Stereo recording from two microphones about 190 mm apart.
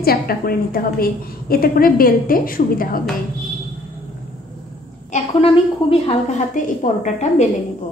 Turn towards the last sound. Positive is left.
turn(degrees=40)  # may be behind; listen again after turning